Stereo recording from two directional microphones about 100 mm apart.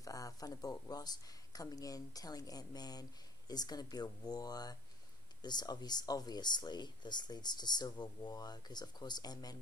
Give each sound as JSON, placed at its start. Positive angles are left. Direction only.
{"t": 0.0, "sound": "speech", "side_deg": 35}